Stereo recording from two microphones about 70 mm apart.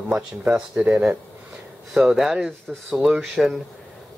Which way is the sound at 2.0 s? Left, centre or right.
Centre.